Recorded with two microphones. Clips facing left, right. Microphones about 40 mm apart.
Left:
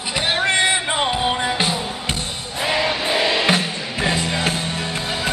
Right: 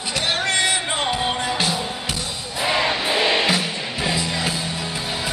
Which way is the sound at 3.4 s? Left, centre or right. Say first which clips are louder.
Left 2 dB; left.